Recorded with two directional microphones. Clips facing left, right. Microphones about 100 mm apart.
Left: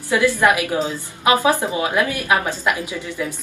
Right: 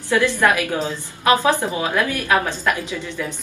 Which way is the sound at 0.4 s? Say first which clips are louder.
Left 1 dB; 15° left (ahead or behind).